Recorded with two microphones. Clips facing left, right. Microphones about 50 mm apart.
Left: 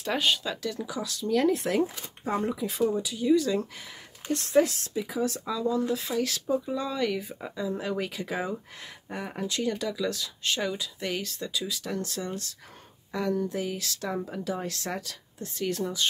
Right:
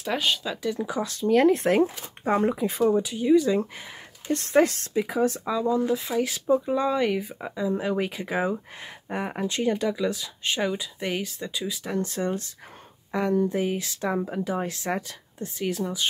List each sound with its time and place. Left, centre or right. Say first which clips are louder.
0.0 s speech: right 1 dB; centre
0.7 s speech: right 5 dB; right
4.3 s speech: right 3 dB; right
5.2 s speech: right 2 dB; right
15.5 s speech: right 1 dB; centre